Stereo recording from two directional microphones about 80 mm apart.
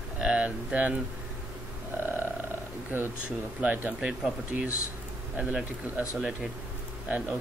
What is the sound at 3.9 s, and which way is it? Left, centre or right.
Speech, centre.